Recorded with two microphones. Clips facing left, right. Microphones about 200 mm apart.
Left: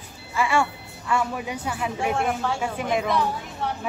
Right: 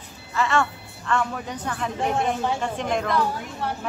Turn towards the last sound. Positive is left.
turn(degrees=0)  # may be behind; listen again after turning